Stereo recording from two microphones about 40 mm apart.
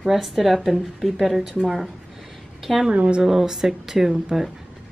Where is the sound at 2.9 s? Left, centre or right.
Right.